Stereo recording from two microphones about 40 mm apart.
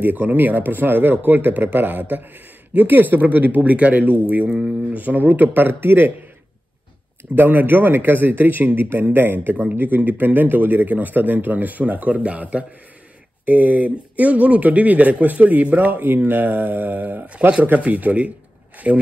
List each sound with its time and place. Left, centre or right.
0.0 s speech: right
4.5 s speech: right
4.9 s speech: right
7.3 s speech: right